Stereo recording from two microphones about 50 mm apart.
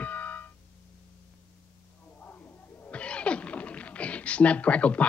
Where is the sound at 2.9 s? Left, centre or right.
Left.